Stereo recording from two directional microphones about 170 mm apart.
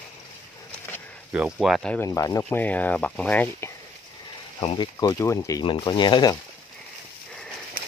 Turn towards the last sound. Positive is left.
turn(degrees=-55)  # may be behind; listen again after turning